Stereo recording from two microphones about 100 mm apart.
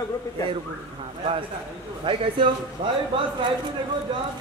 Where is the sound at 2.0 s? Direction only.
55° right (ahead or behind).